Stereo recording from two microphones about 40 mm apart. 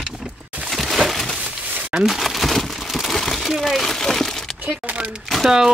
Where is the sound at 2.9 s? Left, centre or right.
Centre.